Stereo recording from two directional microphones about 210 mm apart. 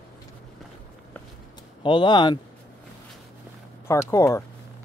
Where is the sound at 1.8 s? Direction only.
20° left (ahead or behind).